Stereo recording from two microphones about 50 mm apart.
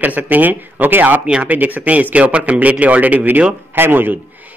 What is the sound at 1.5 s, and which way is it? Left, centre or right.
A man's voice, right.